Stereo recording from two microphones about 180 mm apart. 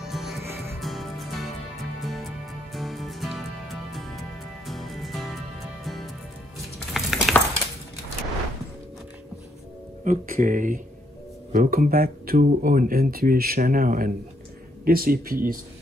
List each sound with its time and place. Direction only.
0.0 s music: centre (ahead or behind)
0.4 s music: 15° right (ahead or behind)
0.7 s music: centre (ahead or behind)
6.9 s a sound: centre (ahead or behind)
10.0 s speech: 50° right (ahead or behind)